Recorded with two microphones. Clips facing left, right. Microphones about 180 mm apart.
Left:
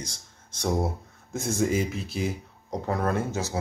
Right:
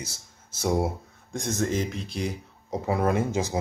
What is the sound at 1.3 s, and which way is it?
Speech, 5° left (ahead or behind).